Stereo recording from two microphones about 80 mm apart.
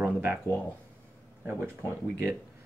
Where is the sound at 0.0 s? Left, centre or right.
Right.